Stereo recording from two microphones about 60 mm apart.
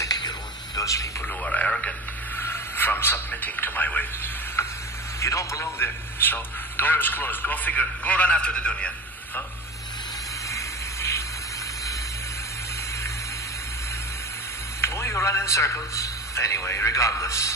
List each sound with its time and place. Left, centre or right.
0.7 s speech: left
1.2 s a man's voice: left
2.3 s a sound: left
3.3 s a man's voice: left
4.6 s a sound: left
5.2 s a man's voice: left
5.8 s a man's voice: left; by 8.9 s centre
10.5 s a sound: left
14.8 s a man's voice: left